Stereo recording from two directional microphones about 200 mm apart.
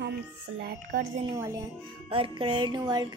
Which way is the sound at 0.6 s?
50° right (ahead or behind).